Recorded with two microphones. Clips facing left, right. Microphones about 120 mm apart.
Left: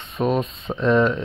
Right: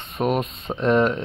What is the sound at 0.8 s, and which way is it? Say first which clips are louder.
Speech: left 1 dB; 45° right (ahead or behind).